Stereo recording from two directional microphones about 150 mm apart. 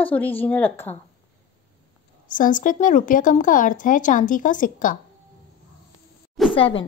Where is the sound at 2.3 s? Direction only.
60° left (ahead or behind).